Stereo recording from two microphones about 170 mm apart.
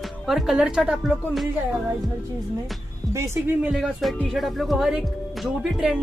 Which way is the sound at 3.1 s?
15° right (ahead or behind).